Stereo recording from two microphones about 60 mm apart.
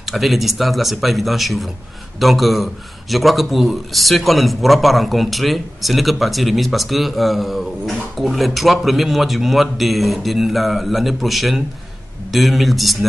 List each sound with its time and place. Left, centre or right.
0.0 s a man's voice: centre